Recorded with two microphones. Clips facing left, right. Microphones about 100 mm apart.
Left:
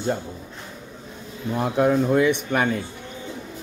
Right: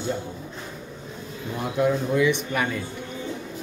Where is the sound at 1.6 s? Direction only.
50° left (ahead or behind).